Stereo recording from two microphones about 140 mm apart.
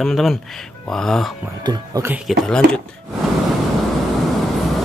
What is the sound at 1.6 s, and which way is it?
Speech, 25° right (ahead or behind).